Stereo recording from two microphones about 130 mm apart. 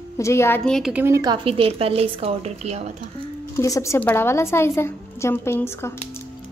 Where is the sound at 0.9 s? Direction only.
20° right (ahead or behind).